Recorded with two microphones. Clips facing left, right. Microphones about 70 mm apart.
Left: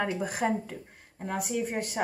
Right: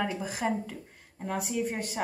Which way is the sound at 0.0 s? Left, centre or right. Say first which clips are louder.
Left 2 dB; centre.